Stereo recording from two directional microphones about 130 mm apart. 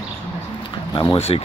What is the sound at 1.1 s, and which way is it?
Speech, 50° left (ahead or behind).